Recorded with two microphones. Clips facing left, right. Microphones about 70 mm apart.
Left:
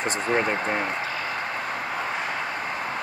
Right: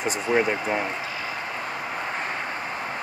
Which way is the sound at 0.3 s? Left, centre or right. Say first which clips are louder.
Right 2 dB; left.